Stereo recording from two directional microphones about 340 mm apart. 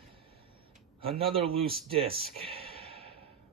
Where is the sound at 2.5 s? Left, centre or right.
Centre.